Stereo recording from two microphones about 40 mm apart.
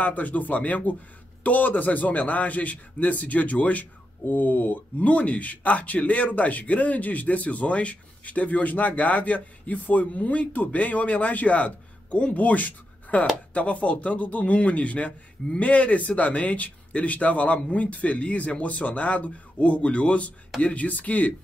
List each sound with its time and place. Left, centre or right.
0.0 s speech: left